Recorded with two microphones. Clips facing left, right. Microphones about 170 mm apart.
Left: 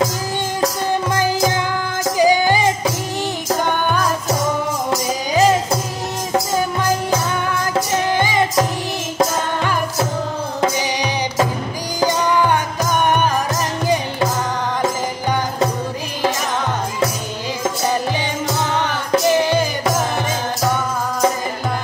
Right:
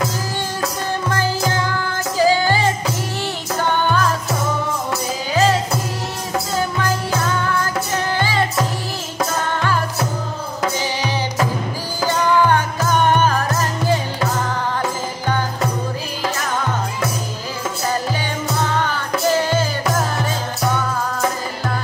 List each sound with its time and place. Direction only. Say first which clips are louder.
1.1 s music: left 1 dB; 15° left (ahead or behind)
5.3 s music: left 2 dB; 15° left (ahead or behind)
8.1 s music: left 2 dB; 15° left (ahead or behind)
12.0 s music: even; 15° left (ahead or behind)
19.3 s music: left 2 dB; 20° left (ahead or behind)